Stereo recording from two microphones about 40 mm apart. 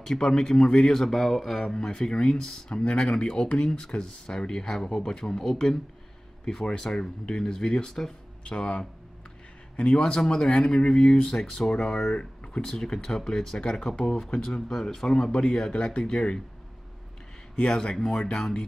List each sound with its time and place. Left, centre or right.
0.0 s speech: centre
1.0 s speech: centre
17.6 s speech: centre